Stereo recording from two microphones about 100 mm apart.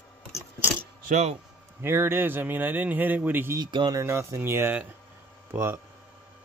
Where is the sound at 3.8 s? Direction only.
30° right (ahead or behind).